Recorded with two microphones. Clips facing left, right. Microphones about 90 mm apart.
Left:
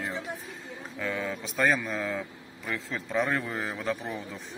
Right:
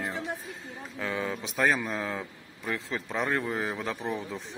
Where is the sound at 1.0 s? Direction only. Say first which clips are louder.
Even; 25° right (ahead or behind).